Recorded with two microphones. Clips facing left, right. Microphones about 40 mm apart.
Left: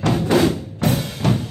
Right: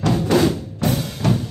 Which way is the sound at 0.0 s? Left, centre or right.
Centre.